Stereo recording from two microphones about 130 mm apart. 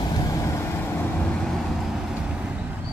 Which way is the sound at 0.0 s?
30° left (ahead or behind).